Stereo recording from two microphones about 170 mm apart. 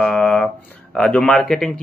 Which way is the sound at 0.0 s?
5° left (ahead or behind).